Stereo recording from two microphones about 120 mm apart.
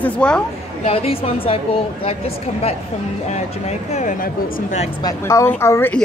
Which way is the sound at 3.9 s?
80° left.